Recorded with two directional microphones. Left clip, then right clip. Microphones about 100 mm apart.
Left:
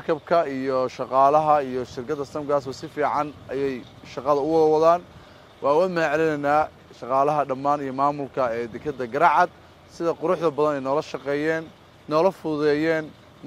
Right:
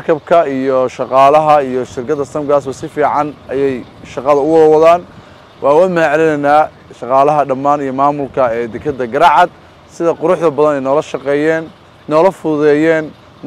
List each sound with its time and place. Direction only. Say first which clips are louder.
0.0 s speech: right 11 dB; 45° right (ahead or behind)